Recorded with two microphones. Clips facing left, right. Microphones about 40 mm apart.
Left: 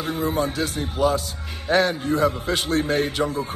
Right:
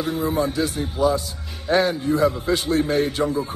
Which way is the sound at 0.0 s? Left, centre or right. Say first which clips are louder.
Right 1 dB; left.